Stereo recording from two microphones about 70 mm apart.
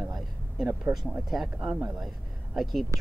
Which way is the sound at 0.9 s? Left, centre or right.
Centre.